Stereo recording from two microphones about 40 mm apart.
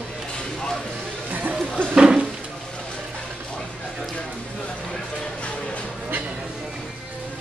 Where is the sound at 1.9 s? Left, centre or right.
Centre.